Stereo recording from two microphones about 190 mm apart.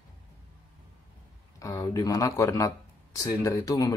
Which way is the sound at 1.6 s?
20° left (ahead or behind).